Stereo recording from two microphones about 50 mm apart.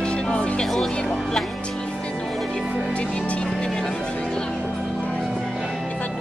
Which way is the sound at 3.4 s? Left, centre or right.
Centre.